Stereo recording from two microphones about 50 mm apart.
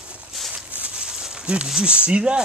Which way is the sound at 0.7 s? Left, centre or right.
Right.